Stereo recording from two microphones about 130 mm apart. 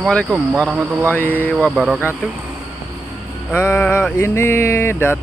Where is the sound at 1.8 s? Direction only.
10° right (ahead or behind).